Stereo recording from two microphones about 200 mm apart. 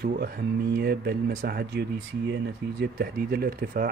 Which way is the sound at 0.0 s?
50° right (ahead or behind).